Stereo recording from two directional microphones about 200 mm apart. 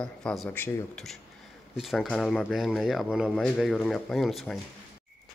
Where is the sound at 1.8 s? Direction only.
Centre (ahead or behind).